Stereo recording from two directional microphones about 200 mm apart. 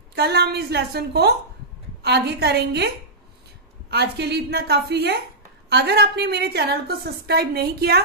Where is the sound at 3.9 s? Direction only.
55° right (ahead or behind).